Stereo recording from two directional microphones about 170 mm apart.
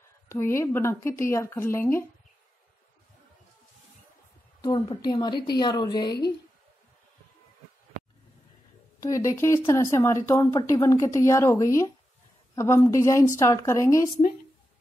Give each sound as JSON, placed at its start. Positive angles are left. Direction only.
{"t": 0.3, "sound": "a woman's voice", "side_deg": 15}
{"t": 4.6, "sound": "a woman's voice", "side_deg": 25}
{"t": 9.0, "sound": "a woman's voice", "side_deg": 20}